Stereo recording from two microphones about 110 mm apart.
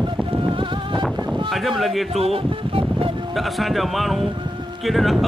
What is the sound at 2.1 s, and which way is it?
Speech, 60° right (ahead or behind).